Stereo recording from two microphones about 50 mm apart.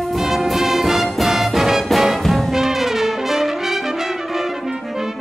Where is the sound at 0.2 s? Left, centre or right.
Centre.